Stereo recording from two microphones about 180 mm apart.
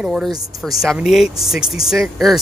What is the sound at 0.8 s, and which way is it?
Speech, centre (ahead or behind).